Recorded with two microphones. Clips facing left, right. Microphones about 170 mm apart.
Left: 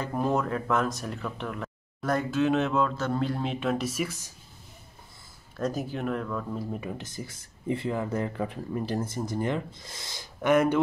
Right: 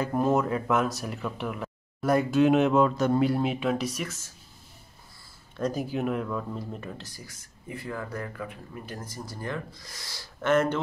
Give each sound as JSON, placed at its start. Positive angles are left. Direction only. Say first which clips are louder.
{"t": 0.0, "sound": "speech", "louder": "right 3 dB", "side_deg": -5}
{"t": 5.6, "sound": "speech", "louder": "right 2 dB", "side_deg": 0}
{"t": 6.7, "sound": "speech", "louder": "left 4 dB", "side_deg": 10}
{"t": 7.1, "sound": "speech", "louder": "left 7 dB", "side_deg": 25}